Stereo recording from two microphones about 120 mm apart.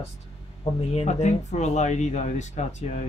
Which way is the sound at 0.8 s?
60° left (ahead or behind).